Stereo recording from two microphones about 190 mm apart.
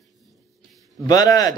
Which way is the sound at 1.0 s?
20° left (ahead or behind).